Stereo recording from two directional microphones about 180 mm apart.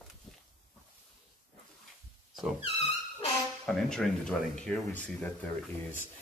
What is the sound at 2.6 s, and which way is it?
Music, 35° left (ahead or behind).